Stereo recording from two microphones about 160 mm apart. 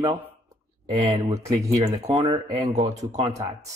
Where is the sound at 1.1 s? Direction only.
20° right (ahead or behind).